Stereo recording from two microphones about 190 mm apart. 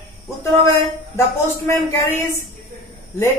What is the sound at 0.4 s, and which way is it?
A woman's voice, 15° left (ahead or behind).